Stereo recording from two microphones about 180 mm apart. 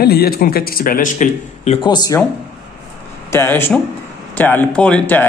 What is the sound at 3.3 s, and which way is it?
Speech, 15° left (ahead or behind).